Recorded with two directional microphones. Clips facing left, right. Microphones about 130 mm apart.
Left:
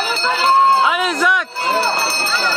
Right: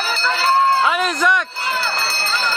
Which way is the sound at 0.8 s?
5° left (ahead or behind).